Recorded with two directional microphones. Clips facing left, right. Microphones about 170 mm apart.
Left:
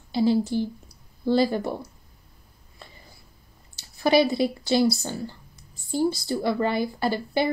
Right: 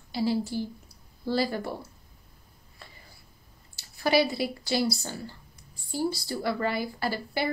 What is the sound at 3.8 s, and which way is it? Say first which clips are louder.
Speech: left 4 dB; 20° left (ahead or behind).